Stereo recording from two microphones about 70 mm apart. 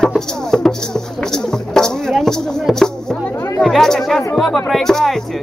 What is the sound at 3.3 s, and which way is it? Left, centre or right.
Chatter, left.